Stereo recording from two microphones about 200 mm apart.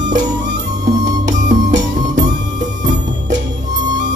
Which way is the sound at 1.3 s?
40° right (ahead or behind).